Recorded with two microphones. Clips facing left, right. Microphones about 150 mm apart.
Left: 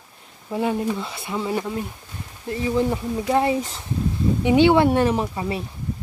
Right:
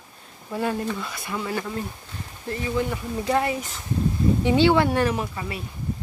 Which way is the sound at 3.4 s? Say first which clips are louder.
Left 5 dB; 25° left (ahead or behind).